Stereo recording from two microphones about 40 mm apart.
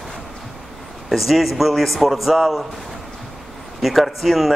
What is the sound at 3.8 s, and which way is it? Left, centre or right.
Speech, centre.